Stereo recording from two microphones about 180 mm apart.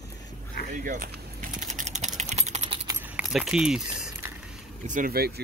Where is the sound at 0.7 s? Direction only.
45° right (ahead or behind).